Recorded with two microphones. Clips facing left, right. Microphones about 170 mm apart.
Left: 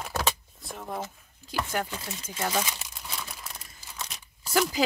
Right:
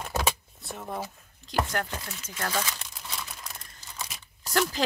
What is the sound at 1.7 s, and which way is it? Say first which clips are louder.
Speech: left 1 dB; 10° left (ahead or behind).